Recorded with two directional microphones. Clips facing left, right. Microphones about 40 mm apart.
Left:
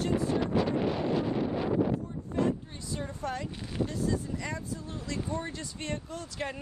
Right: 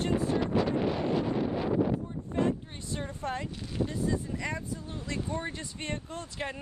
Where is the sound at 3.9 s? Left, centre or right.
Right.